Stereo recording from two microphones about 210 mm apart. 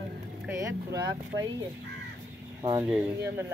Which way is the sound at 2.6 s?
20° right (ahead or behind).